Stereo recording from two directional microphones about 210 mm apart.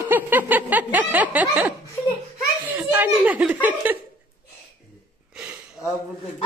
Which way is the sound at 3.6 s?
10° right (ahead or behind).